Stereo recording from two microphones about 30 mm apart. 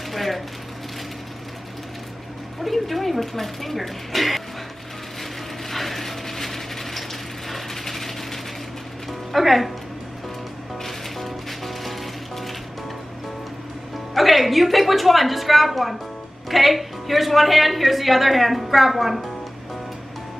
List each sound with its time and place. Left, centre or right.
0.1 s speech: centre
2.6 s a woman's voice: centre
5.7 s a sound: centre
9.3 s a woman's voice: centre
10.8 s music: centre
14.1 s a woman's voice: centre